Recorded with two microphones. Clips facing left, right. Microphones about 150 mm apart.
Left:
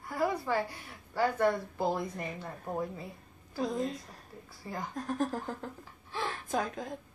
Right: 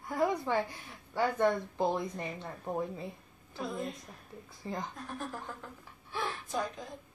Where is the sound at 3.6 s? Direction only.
40° left (ahead or behind).